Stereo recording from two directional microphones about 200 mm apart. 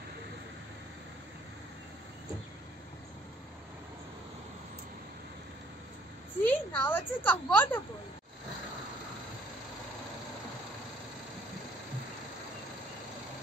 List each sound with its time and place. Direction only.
6.4 s a woman's voice: 10° left (ahead or behind)